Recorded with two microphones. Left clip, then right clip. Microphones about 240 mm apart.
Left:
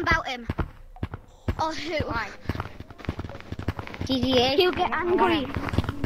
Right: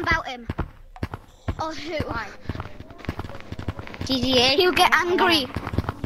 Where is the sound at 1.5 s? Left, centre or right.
Centre.